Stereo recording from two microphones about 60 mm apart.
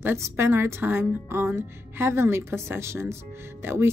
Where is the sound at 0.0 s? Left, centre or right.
Right.